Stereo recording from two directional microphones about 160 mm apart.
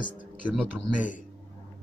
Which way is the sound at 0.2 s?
10° right (ahead or behind).